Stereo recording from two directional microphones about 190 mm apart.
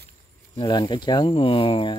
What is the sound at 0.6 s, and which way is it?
Speech, 20° left (ahead or behind).